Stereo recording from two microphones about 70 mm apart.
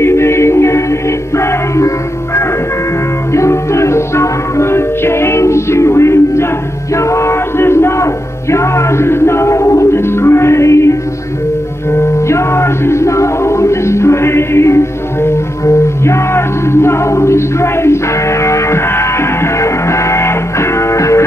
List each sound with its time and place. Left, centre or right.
0.0 s music: left
3.3 s music: left